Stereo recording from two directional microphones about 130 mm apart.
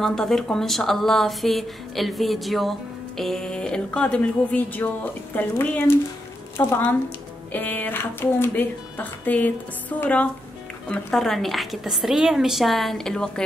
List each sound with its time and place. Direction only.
0.0 s speech: 5° left (ahead or behind)